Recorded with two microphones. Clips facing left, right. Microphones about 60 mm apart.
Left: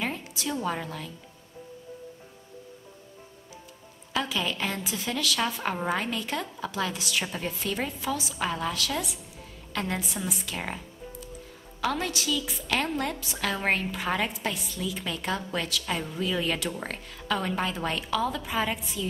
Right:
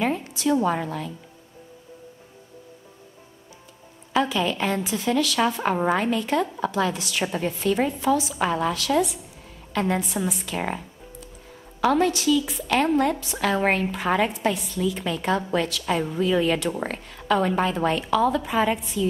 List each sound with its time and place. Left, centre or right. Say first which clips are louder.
0.2 s a sound: right 10 dB; centre
0.7 s a woman's voice: right 6 dB; centre
4.2 s a woman's voice: right 6 dB; centre
11.8 s a woman's voice: right 9 dB; centre